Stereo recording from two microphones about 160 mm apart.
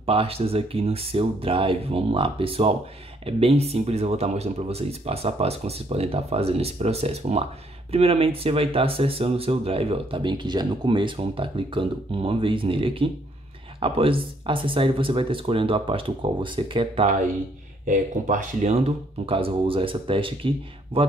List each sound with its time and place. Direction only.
0.0 s speech: 35° right (ahead or behind)
17.8 s speech: 55° right (ahead or behind); by 21.0 s 35° right (ahead or behind)